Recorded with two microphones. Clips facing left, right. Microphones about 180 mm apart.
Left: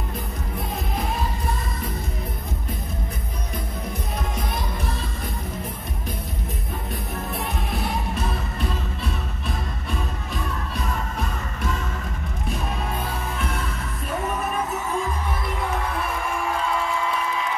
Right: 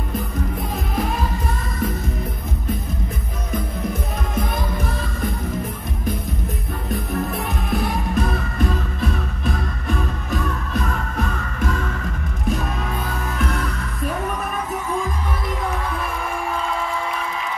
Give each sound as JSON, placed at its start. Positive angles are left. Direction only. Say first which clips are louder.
{"t": 8.1, "sound": "music", "louder": "right 5 dB", "side_deg": -45}